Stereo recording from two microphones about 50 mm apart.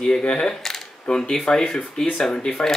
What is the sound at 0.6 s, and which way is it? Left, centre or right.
Camera, centre.